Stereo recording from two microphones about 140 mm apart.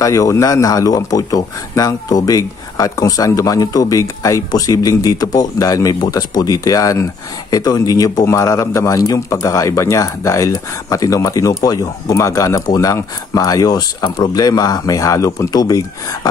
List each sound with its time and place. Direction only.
0.0 s a man's voice: 25° left (ahead or behind)